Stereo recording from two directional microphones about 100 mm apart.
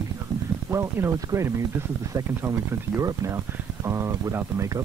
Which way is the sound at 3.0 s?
30° right (ahead or behind).